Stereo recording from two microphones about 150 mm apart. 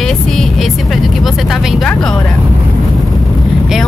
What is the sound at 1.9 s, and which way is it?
Speech, 5° left (ahead or behind).